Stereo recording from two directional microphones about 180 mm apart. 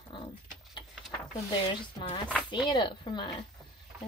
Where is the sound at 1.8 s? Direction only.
25° left (ahead or behind).